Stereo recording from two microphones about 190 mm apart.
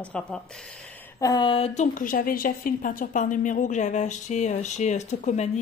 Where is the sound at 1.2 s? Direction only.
25° left (ahead or behind).